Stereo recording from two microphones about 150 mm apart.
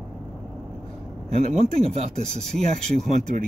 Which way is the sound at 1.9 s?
45° right (ahead or behind).